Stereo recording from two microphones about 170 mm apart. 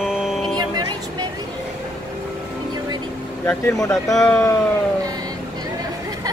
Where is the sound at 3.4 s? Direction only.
10° left (ahead or behind).